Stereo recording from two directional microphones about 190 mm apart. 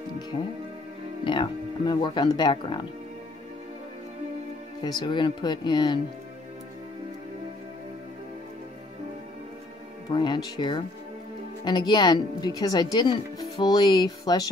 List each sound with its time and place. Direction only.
0.3 s speech: 25° left (ahead or behind)
4.8 s speech: 25° left (ahead or behind)
10.1 s speech: 25° left (ahead or behind)